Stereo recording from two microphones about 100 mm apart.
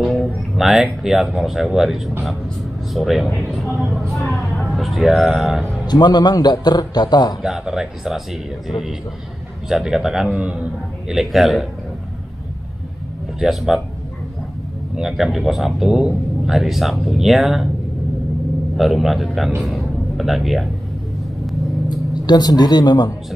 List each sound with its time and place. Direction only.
0.1 s speech: centre (ahead or behind)
5.9 s a man's voice: 45° left (ahead or behind)
7.4 s speech: 5° right (ahead or behind)
9.7 s speech: 5° right (ahead or behind)
13.4 s speech: 5° right (ahead or behind)
15.0 s speech: 5° right (ahead or behind)
18.8 s speech: centre (ahead or behind)
21.8 s speech: 45° left (ahead or behind)